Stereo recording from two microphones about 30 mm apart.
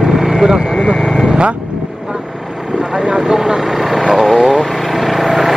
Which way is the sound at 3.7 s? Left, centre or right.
Centre.